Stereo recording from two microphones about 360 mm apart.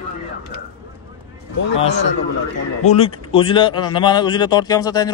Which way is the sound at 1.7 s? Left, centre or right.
Centre.